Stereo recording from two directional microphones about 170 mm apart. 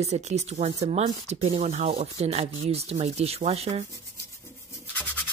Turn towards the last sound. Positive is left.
turn(degrees=10)  # may be behind; listen again after turning